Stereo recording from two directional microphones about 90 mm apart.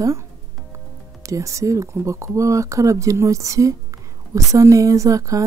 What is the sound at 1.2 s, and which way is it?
Speech, 35° right (ahead or behind).